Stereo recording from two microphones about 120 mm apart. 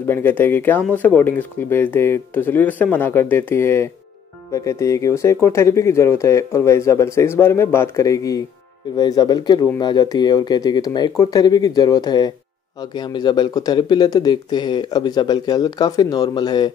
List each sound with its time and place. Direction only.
0.0 s speech: 15° left (ahead or behind); by 16.7 s 40° left (ahead or behind)